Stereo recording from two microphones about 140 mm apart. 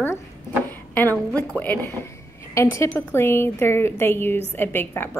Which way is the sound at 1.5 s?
10° left (ahead or behind).